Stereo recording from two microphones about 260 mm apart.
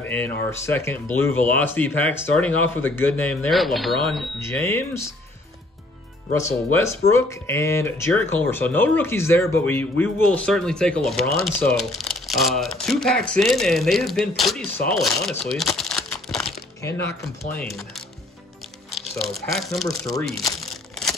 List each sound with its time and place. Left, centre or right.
0.0 s speech: centre
6.3 s speech: centre
15.5 s crumpling: centre
17.6 s speech: centre
18.9 s crumpling: centre
19.3 s speech: centre
20.1 s crumpling: centre